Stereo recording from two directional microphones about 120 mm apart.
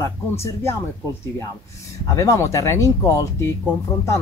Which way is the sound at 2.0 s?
25° left (ahead or behind).